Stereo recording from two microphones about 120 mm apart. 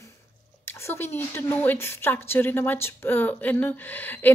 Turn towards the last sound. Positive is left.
turn(degrees=15)  # may be behind; listen again after turning